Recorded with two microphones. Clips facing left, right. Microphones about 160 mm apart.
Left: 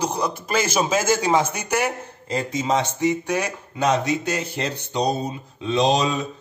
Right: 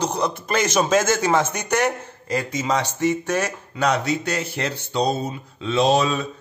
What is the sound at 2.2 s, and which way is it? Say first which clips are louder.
A man's voice: even; 25° left (ahead or behind).